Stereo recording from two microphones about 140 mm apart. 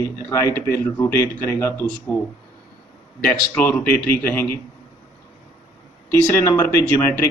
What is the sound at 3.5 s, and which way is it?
Speech, 10° left (ahead or behind).